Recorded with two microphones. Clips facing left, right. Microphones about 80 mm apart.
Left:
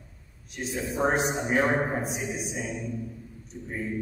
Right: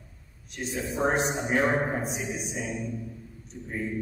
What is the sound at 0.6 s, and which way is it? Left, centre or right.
A man's voice, centre.